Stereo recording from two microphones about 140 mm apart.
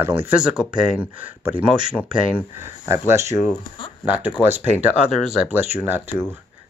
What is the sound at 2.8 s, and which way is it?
Speech, 20° right (ahead or behind).